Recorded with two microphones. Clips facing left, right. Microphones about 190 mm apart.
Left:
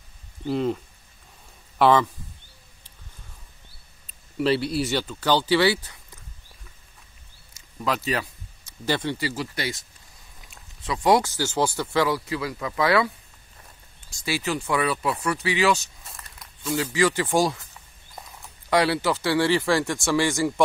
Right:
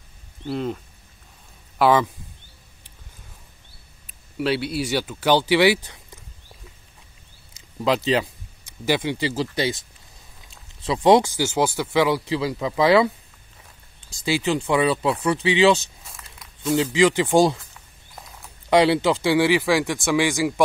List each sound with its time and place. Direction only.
0.4 s speech: centre (ahead or behind)
1.8 s a man's voice: 5° right (ahead or behind)
4.4 s speech: centre (ahead or behind)
7.8 s speech: 25° right (ahead or behind)
8.8 s speech: 10° right (ahead or behind)
9.2 s speech: 25° right (ahead or behind)
10.8 s speech: 25° right (ahead or behind)
14.2 s speech: 20° right (ahead or behind)
16.0 s a sound: centre (ahead or behind)
16.6 s speech: 20° right (ahead or behind)
18.7 s speech: 20° right (ahead or behind)
20.2 s speech: centre (ahead or behind)